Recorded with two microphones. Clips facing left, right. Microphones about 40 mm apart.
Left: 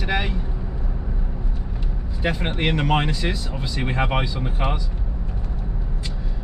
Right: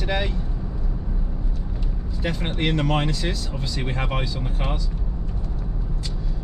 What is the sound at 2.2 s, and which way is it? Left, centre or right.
Speech, left.